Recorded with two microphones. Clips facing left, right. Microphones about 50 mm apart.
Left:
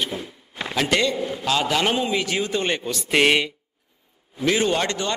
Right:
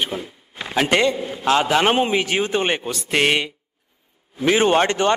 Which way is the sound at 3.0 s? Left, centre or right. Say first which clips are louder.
Left 2 dB; centre.